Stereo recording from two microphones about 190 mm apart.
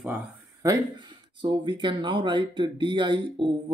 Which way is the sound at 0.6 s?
25° right (ahead or behind).